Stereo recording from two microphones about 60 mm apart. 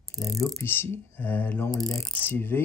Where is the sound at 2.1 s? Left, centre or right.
Left.